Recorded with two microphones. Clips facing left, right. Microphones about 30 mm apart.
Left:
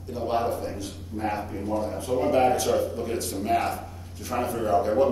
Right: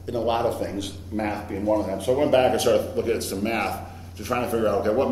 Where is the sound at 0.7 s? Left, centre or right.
Right.